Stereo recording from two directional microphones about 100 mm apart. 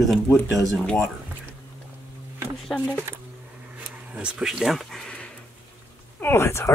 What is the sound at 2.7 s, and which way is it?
Speech, 5° left (ahead or behind).